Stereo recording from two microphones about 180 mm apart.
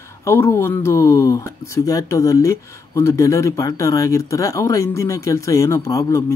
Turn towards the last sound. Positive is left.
turn(degrees=15)  # may be behind; listen again after turning